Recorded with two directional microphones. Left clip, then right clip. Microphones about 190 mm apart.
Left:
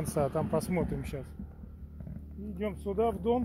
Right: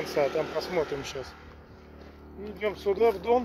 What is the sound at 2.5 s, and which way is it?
Speech, 20° left (ahead or behind).